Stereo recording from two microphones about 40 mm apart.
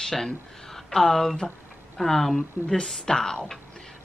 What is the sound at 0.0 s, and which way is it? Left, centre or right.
Speech, centre.